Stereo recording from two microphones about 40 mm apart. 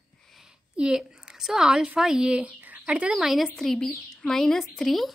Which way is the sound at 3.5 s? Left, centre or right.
Centre.